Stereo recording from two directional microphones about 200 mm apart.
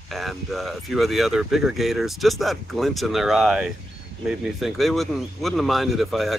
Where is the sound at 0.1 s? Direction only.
Centre (ahead or behind).